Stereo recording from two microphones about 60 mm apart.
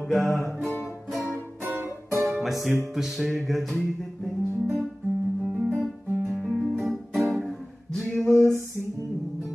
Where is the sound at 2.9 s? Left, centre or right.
Centre.